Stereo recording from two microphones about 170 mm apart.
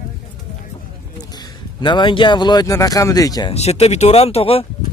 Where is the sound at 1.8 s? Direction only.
25° left (ahead or behind).